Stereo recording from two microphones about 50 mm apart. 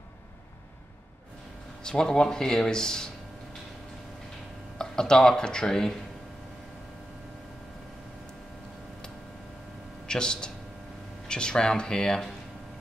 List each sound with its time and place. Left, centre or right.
1.8 s speech: centre
4.7 s speech: centre
10.0 s a man's voice: centre